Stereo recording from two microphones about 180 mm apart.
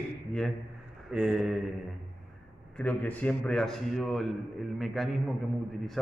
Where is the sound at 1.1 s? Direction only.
5° right (ahead or behind).